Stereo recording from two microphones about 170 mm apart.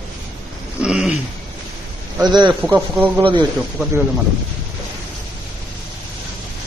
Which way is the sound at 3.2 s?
30° right (ahead or behind).